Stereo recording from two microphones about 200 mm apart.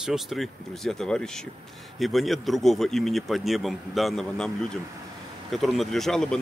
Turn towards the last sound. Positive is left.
turn(degrees=5)  # may be behind; listen again after turning